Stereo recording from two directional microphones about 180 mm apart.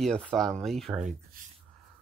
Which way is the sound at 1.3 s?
50° right (ahead or behind).